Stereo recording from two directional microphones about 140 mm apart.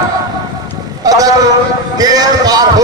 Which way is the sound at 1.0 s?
25° right (ahead or behind).